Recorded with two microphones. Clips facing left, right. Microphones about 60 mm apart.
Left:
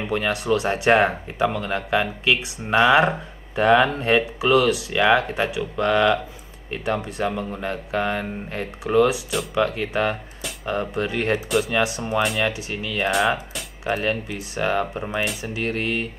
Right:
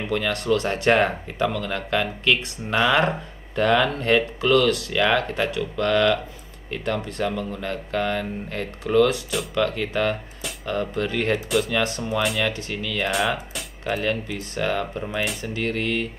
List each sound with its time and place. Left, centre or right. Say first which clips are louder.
0.0 s speech: left 1 dB; centre
11.4 s speech: left 1 dB; centre
11.7 s speech: left 2 dB; centre
12.2 s speech: left 2 dB; centre
12.4 s speech: left 1 dB; centre
13.1 s speech: left 5 dB; centre
13.8 s speech: left 1 dB; centre